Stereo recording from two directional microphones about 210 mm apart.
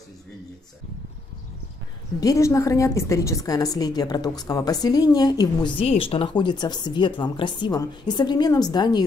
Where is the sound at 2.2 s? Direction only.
15° left (ahead or behind).